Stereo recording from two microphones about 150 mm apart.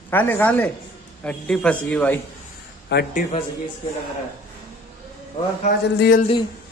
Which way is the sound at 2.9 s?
75° left (ahead or behind).